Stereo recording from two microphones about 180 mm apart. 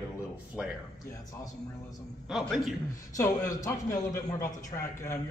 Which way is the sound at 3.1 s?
20° left (ahead or behind).